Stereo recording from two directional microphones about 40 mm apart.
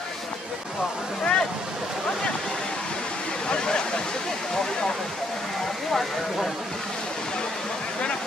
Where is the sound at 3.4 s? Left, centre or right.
Left.